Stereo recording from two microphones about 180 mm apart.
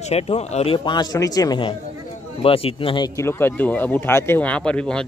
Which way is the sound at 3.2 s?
10° left (ahead or behind).